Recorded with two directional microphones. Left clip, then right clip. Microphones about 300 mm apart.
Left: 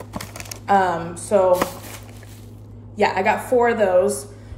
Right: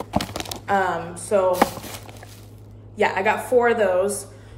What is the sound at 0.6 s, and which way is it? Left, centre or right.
Speech, centre.